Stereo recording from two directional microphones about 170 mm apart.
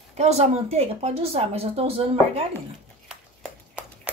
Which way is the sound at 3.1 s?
5° right (ahead or behind).